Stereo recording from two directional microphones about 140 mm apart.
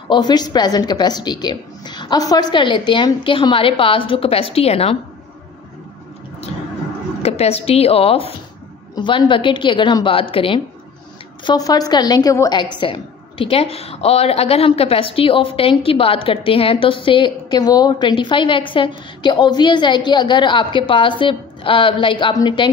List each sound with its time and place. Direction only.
0.1 s a woman's voice: 30° left (ahead or behind)
7.2 s a woman's voice: 45° left (ahead or behind)
11.4 s a woman's voice: 25° left (ahead or behind)
12.7 s a woman's voice: 35° left (ahead or behind)